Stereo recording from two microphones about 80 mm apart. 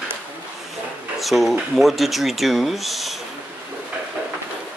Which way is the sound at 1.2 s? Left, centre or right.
Centre.